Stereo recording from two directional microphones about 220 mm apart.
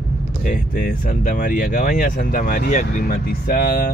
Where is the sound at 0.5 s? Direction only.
40° left (ahead or behind).